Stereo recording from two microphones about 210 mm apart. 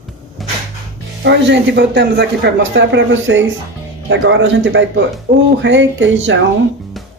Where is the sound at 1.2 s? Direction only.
55° right (ahead or behind).